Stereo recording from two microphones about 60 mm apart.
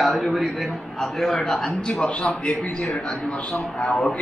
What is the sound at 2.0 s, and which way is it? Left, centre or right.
A man's voice, centre.